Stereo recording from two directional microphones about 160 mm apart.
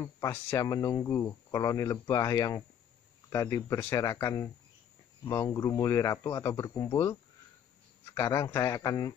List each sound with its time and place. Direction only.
0.0 s speech: 15° left (ahead or behind)